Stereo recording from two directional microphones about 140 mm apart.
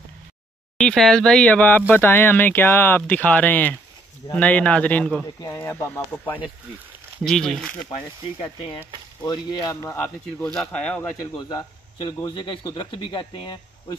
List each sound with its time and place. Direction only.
0.7 s speech: 5° left (ahead or behind)
5.2 s speech: 20° left (ahead or behind)
7.2 s speech: 5° left (ahead or behind)
9.2 s speech: 30° left (ahead or behind)
9.8 s speech: 20° left (ahead or behind)
10.5 s speech: 5° left (ahead or behind)
11.3 s speech: 30° left (ahead or behind)